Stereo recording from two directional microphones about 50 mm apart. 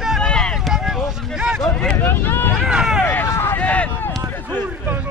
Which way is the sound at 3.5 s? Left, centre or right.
Left.